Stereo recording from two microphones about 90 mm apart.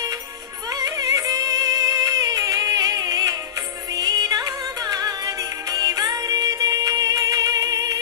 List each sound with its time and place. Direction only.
0.7 s music: 40° right (ahead or behind)